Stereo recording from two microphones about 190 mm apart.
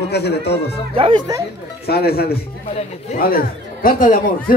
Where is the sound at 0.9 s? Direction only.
25° right (ahead or behind).